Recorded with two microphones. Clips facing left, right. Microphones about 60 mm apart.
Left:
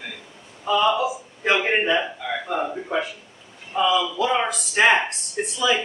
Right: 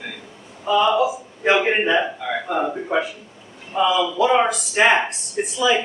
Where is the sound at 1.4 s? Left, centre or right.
Centre.